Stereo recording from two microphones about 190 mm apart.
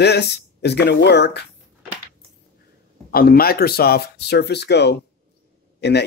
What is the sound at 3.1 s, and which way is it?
Speech, 50° left (ahead or behind).